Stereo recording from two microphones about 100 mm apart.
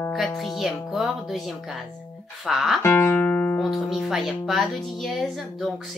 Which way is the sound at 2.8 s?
20° left (ahead or behind).